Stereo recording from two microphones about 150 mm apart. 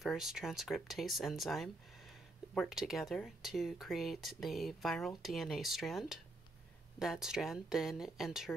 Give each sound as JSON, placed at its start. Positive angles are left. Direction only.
{"t": 0.0, "sound": "speech", "side_deg": 0}